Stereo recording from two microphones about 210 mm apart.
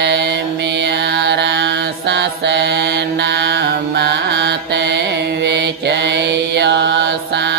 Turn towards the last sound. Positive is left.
turn(degrees=-55)  # may be behind; listen again after turning